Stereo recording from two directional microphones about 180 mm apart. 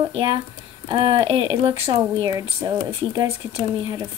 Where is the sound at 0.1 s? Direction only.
30° right (ahead or behind).